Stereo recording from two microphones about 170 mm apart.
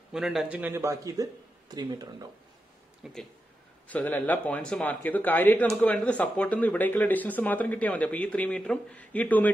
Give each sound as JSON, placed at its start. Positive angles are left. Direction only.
{"t": 0.1, "sound": "a man's voice", "side_deg": -5}
{"t": 3.0, "sound": "speech", "side_deg": 5}